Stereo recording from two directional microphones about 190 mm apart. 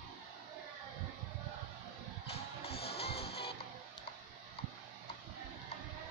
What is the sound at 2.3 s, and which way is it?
Music, 30° left (ahead or behind).